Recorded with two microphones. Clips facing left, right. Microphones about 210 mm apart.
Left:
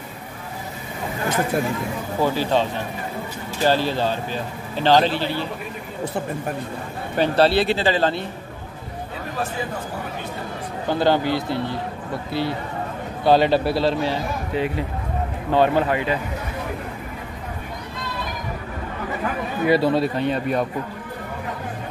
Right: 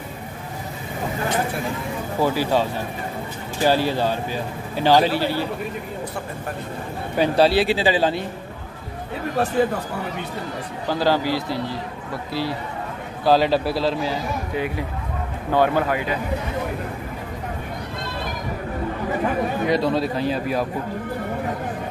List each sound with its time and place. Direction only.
2.1 s a man's voice: 10° right (ahead or behind)
3.6 s a man's voice: 10° right (ahead or behind)
7.2 s a man's voice: 10° right (ahead or behind)
10.9 s a man's voice: centre (ahead or behind)
15.5 s speech: 20° left (ahead or behind)
15.9 s a man's voice: centre (ahead or behind)
19.6 s a man's voice: 5° left (ahead or behind)